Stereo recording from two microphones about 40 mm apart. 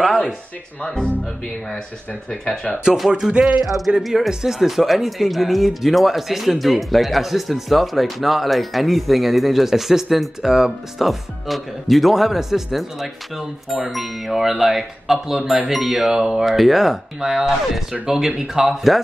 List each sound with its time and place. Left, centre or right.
0.8 s speech: centre
3.1 s music: centre
3.6 s speech: centre
4.3 s speech: centre
4.6 s speech: centre